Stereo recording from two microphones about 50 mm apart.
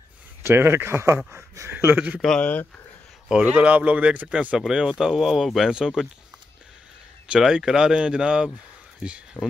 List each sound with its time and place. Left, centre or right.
0.5 s speech: right
1.7 s speech: right
2.1 s speech: centre
3.3 s speech: right
4.6 s speech: centre
5.7 s speech: centre
7.2 s speech: centre
9.4 s speech: left